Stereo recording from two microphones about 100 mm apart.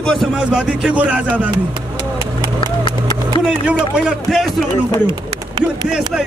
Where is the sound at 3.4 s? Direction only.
10° right (ahead or behind).